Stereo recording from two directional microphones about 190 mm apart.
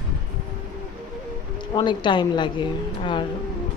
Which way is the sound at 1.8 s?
25° left (ahead or behind).